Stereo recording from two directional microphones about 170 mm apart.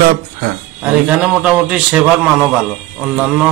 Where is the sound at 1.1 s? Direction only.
5° right (ahead or behind).